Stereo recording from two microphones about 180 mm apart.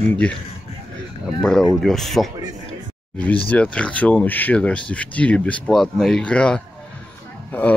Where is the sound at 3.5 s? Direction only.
5° left (ahead or behind).